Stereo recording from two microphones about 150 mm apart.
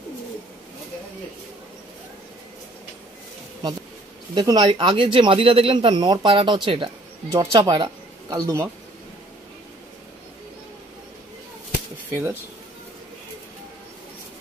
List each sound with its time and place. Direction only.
4.4 s speech: 30° right (ahead or behind)
7.2 s speech: 20° right (ahead or behind)
12.1 s speech: 15° right (ahead or behind)